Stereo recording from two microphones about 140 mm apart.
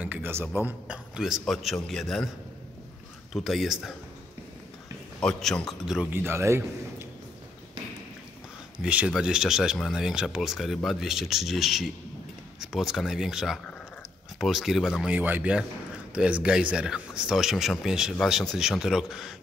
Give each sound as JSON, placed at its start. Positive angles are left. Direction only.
{"t": 0.0, "sound": "a man's voice", "side_deg": -15}
{"t": 3.3, "sound": "speech", "side_deg": 0}
{"t": 5.2, "sound": "speech", "side_deg": 5}
{"t": 6.1, "sound": "a man's voice", "side_deg": -15}
{"t": 8.7, "sound": "speech", "side_deg": -5}
{"t": 15.1, "sound": "speech", "side_deg": -10}